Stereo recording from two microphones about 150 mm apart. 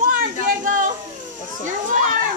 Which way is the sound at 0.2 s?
60° right (ahead or behind).